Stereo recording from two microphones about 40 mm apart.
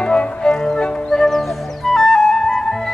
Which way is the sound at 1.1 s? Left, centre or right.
Centre.